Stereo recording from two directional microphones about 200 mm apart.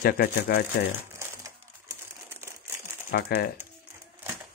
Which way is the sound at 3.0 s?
50° left (ahead or behind).